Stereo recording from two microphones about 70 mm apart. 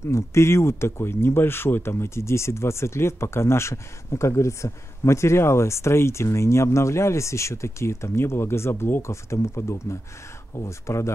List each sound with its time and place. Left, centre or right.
0.1 s speech: left